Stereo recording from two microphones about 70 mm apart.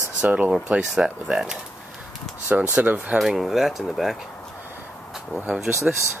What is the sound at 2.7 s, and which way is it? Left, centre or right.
Speech, right.